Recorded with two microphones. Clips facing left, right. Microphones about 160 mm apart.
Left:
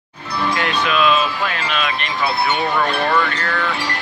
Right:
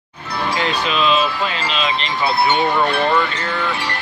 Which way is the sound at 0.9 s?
20° right (ahead or behind).